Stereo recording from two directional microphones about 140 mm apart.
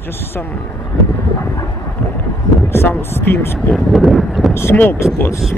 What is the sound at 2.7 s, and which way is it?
Speech, 15° left (ahead or behind).